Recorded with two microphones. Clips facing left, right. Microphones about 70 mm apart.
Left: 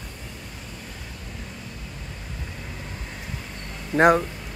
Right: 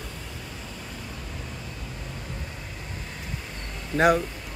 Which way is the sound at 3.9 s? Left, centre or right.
Left.